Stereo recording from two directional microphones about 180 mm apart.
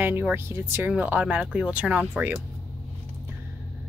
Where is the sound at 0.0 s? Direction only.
10° right (ahead or behind).